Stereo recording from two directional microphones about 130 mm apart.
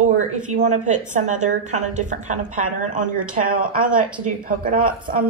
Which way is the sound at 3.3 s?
90° right.